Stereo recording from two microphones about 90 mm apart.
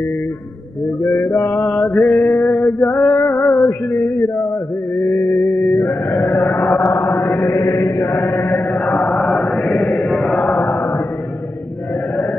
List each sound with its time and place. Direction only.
1.0 s mantra: 5° left (ahead or behind)
1.3 s mantra: 40° left (ahead or behind)
1.6 s mantra: centre (ahead or behind)
3.3 s music: 5° left (ahead or behind)
4.9 s mantra: 5° left (ahead or behind)
5.3 s music: 5° left (ahead or behind)
6.2 s a sound: 5° left (ahead or behind)
7.1 s mantra: 5° left (ahead or behind)
7.4 s chant: 45° left (ahead or behind)
8.2 s chant: 5° left (ahead or behind)